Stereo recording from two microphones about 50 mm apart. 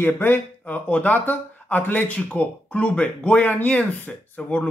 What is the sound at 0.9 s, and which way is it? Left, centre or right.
Speech, left.